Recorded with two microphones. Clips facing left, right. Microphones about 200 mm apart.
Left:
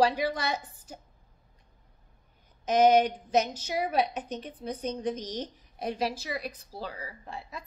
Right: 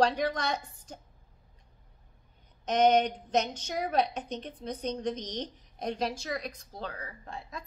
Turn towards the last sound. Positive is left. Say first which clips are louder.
# left 1 dB
turn(degrees=5)  # may be behind; listen again after turning